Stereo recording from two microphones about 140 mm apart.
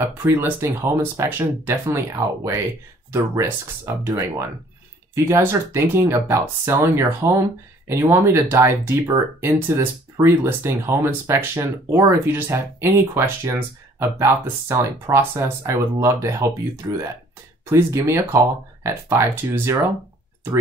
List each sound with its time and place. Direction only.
0.2 s speech: 15° right (ahead or behind)